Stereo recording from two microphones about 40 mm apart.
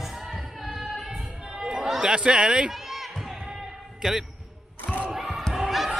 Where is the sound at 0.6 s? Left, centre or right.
Centre.